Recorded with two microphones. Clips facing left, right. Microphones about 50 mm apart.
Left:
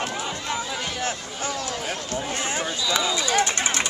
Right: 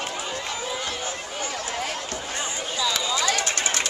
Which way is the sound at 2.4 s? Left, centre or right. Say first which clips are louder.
Left 4 dB; left.